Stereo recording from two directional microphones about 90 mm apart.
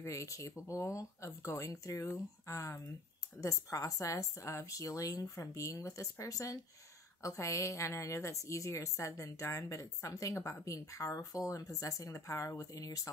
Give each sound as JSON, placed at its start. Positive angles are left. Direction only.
{"t": 0.0, "sound": "a woman's voice", "side_deg": 35}